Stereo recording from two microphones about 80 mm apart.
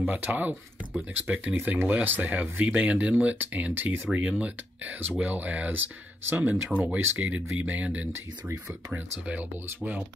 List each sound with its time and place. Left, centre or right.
0.0 s speech: right
6.7 s speech: centre
7.2 s speech: centre